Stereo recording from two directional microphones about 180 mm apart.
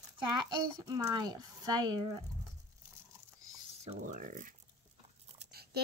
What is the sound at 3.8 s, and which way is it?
Speech, 45° right (ahead or behind).